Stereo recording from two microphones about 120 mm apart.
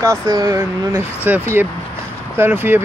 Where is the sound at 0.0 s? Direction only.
25° right (ahead or behind).